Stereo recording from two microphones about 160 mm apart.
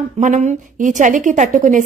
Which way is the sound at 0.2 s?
50° right (ahead or behind).